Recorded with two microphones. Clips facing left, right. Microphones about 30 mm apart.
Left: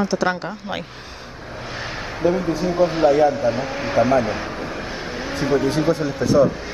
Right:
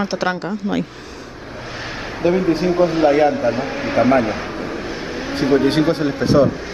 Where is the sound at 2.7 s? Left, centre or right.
Centre.